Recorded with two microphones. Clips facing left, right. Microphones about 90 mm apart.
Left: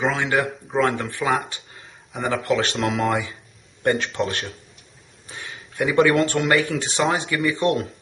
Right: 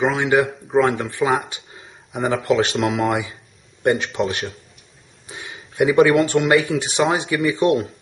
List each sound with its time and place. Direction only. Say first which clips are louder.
0.0 s speech: right 4 dB; 5° right (ahead or behind)
2.4 s speech: right 4 dB; 20° right (ahead or behind)
2.8 s speech: right 2 dB; 5° right (ahead or behind)
5.3 s a sound: right 1 dB; 15° right (ahead or behind)
5.9 s speech: right 3 dB; 5° right (ahead or behind)